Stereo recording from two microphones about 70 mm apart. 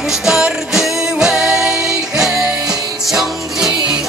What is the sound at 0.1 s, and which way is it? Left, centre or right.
Music, centre.